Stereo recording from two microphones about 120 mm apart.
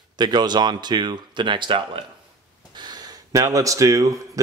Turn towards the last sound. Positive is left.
turn(degrees=-30)  # may be behind; listen again after turning